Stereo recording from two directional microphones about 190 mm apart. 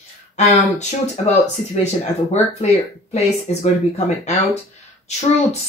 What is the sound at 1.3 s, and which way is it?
Speech, 35° left (ahead or behind).